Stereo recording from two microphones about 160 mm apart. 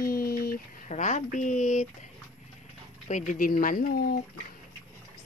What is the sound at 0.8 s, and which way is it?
Speech, 50° left (ahead or behind).